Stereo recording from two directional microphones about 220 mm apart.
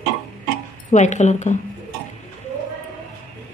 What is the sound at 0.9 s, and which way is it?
Speech, 30° left (ahead or behind).